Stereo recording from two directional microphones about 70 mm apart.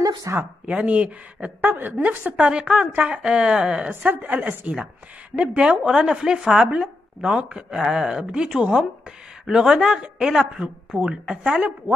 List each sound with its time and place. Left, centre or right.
0.3 s speech: right
0.7 s a woman's voice: centre